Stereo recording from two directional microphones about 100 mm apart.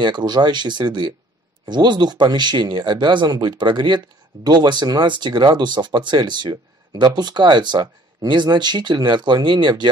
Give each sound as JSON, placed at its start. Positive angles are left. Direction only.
{"t": 0.0, "sound": "speech", "side_deg": -45}